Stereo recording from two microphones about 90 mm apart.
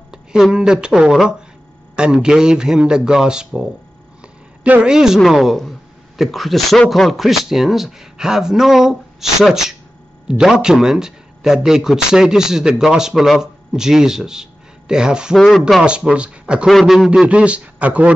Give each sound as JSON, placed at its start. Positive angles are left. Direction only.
{"t": 0.1, "sound": "a woman's voice", "side_deg": -5}
{"t": 4.6, "sound": "a man's voice", "side_deg": -15}
{"t": 4.9, "sound": "a man's voice", "side_deg": -5}
{"t": 16.6, "sound": "speech", "side_deg": 0}
{"t": 17.3, "sound": "a man's voice", "side_deg": -15}